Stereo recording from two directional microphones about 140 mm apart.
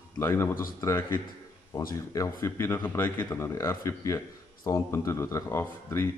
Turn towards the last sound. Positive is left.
turn(degrees=15)  # may be behind; listen again after turning